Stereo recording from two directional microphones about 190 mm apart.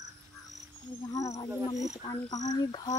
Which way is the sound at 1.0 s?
15° left (ahead or behind).